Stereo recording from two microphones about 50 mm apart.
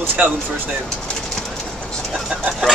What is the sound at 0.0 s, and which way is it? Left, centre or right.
Speech, right.